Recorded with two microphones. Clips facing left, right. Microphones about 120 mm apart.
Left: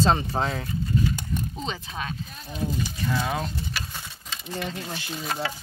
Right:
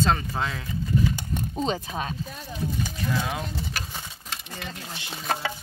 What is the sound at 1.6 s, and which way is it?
Speech, 40° right (ahead or behind).